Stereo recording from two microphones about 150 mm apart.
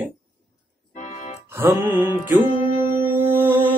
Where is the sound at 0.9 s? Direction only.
55° left (ahead or behind).